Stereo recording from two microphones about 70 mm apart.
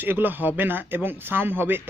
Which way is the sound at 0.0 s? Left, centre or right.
Right.